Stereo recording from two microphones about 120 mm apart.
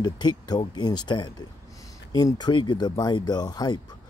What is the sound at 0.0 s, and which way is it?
Speech, 35° left (ahead or behind).